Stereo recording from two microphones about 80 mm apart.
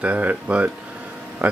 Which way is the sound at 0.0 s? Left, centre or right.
Centre.